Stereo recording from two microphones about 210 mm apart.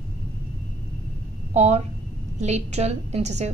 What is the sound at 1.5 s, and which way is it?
A woman's voice, 30° right (ahead or behind).